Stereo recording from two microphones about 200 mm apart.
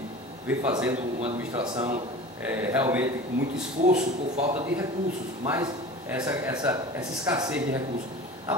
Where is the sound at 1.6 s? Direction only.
20° right (ahead or behind).